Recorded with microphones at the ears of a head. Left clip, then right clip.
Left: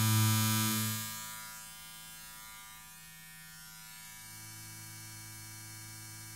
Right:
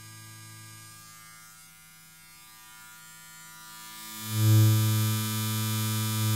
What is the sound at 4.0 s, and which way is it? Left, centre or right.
Mains hum, right.